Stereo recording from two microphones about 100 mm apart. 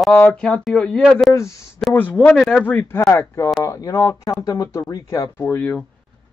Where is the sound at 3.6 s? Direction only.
35° left (ahead or behind).